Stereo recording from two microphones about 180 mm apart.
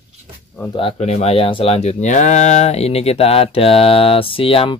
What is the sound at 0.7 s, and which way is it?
Speech, 30° left (ahead or behind).